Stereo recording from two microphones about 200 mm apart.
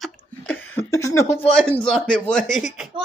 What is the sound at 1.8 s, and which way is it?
Speech, 5° left (ahead or behind).